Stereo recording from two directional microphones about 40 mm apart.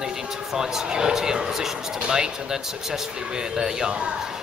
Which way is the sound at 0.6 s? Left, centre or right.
Centre.